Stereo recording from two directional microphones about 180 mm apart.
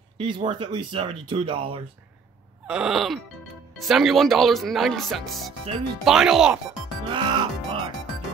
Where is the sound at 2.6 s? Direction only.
5° right (ahead or behind).